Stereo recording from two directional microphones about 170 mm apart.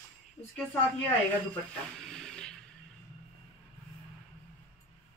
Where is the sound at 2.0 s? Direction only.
5° left (ahead or behind).